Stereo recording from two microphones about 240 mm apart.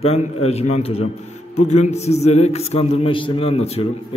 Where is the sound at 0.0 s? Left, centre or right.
Left.